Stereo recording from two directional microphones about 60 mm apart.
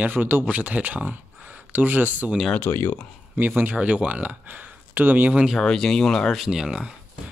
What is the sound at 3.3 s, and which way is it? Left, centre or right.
Speech, right.